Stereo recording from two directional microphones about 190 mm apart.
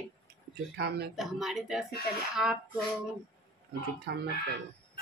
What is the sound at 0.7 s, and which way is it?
Speech, 60° right (ahead or behind).